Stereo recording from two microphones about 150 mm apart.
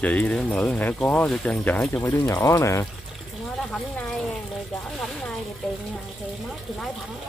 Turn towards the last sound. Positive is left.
turn(degrees=0)  # may be behind; listen again after turning